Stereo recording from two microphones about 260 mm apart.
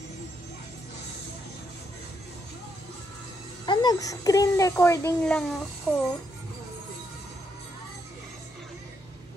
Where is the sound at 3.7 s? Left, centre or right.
Centre.